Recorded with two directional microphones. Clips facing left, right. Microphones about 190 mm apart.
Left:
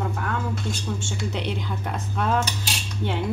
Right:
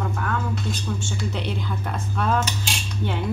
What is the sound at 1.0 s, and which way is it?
Speech, 25° left (ahead or behind).